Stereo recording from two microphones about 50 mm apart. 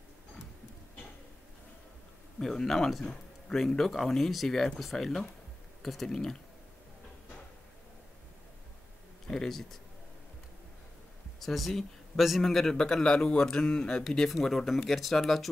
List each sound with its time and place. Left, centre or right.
2.3 s speech: centre
9.3 s speech: centre
11.3 s a man's voice: centre
12.7 s speech: centre
14.3 s speech: centre